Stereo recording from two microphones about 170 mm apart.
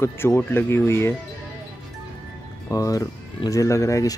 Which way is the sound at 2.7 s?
20° left (ahead or behind).